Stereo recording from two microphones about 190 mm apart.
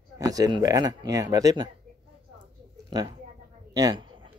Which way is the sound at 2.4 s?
25° right (ahead or behind).